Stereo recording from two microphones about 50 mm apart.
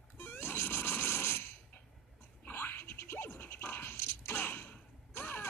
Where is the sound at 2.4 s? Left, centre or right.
Left.